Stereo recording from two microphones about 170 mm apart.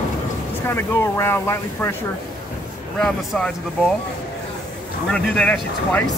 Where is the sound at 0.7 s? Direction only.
15° left (ahead or behind).